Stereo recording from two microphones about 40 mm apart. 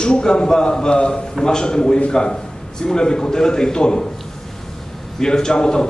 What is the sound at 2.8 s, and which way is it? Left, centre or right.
A man's voice, centre.